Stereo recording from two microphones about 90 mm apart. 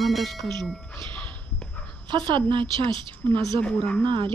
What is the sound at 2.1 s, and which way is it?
Speech, 60° right (ahead or behind).